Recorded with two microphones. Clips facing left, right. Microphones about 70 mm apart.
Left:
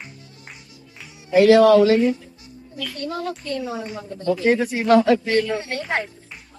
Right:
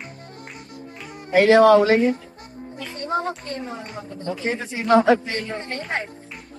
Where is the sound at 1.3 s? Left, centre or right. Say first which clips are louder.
Left 1 dB; right.